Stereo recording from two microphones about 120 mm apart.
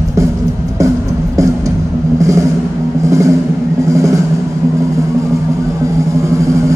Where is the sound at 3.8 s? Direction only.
25° right (ahead or behind).